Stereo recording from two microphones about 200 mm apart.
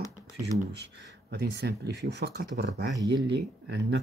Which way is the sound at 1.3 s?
55° right (ahead or behind).